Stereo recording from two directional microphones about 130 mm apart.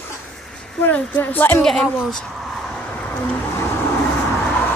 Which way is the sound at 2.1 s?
5° left (ahead or behind).